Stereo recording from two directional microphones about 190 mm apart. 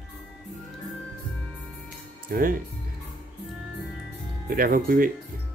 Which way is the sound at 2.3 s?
50° right (ahead or behind).